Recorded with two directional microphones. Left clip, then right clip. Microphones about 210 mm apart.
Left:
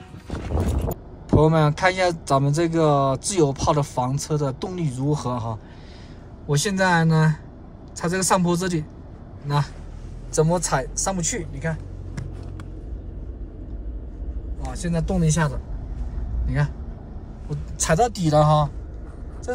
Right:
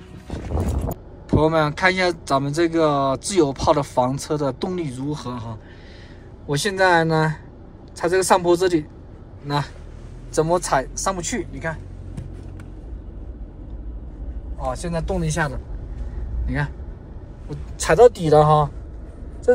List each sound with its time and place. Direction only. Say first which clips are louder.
0.3 s a sound: even; centre (ahead or behind)
1.3 s speech: right 1 dB; 15° left (ahead or behind)
6.4 s speech: right 3 dB; 15° left (ahead or behind)
10.3 s speech: right 2 dB; 10° left (ahead or behind)
14.7 s speech: right 3 dB; centre (ahead or behind)
15.2 s speech: right 1 dB; 15° left (ahead or behind)